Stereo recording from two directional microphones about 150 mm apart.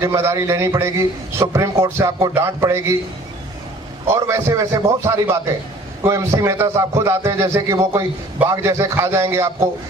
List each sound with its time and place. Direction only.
0.0 s a man's voice: 20° right (ahead or behind)
4.1 s a man's voice: 20° right (ahead or behind)